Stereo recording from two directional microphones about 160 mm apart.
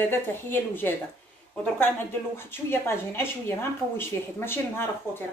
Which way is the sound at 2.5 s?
15° left (ahead or behind).